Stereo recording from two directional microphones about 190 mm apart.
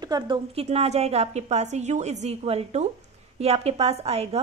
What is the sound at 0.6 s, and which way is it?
A woman's voice, 35° right (ahead or behind).